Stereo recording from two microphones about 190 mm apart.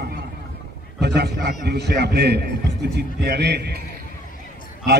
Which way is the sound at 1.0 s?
60° right (ahead or behind).